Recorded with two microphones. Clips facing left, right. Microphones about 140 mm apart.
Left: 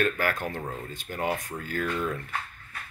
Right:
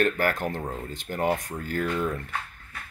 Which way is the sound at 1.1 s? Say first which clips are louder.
Right 4 dB; 45° right (ahead or behind).